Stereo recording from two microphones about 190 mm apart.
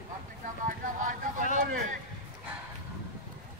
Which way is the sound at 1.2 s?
45° right (ahead or behind).